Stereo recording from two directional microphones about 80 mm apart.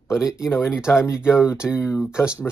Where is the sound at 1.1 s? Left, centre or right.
Centre.